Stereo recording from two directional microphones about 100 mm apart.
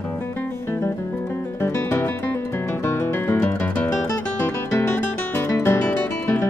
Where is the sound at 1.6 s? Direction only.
25° left (ahead or behind).